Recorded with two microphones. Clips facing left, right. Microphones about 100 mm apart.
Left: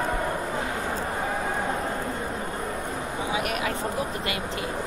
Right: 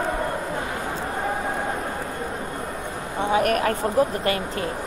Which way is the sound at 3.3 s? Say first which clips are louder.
Right 9 dB; 45° right (ahead or behind).